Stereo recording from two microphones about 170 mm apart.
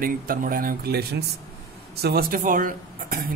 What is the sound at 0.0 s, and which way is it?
A man's voice, 55° right (ahead or behind).